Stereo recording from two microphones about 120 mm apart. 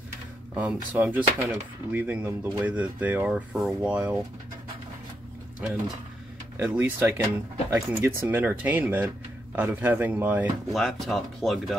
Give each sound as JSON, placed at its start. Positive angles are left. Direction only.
{"t": 0.6, "sound": "speech", "side_deg": -15}
{"t": 5.6, "sound": "speech", "side_deg": -10}
{"t": 10.7, "sound": "speech", "side_deg": 0}